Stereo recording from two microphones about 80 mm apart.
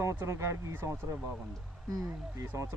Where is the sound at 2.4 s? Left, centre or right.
Right.